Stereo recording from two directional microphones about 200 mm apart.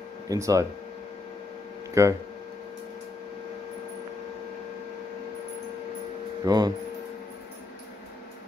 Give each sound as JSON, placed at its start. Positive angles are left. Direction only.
{"t": 0.3, "sound": "speech", "side_deg": -15}
{"t": 2.0, "sound": "speech", "side_deg": -15}
{"t": 6.4, "sound": "speech", "side_deg": -20}